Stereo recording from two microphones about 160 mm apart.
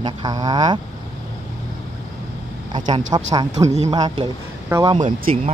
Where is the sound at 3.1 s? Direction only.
25° right (ahead or behind).